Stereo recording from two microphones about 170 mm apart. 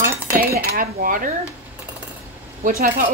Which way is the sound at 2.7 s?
50° right (ahead or behind).